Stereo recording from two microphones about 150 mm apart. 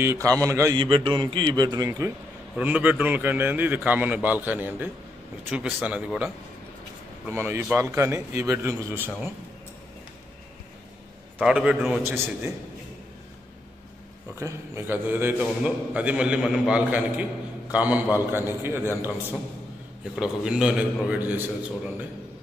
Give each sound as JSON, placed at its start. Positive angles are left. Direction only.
{"t": 0.0, "sound": "a man's voice", "side_deg": -15}
{"t": 0.7, "sound": "a man's voice", "side_deg": -35}
{"t": 7.7, "sound": "a man's voice", "side_deg": -15}
{"t": 11.3, "sound": "a man's voice", "side_deg": -5}
{"t": 12.0, "sound": "a man's voice", "side_deg": -15}
{"t": 14.4, "sound": "a man's voice", "side_deg": -15}
{"t": 20.2, "sound": "a man's voice", "side_deg": -5}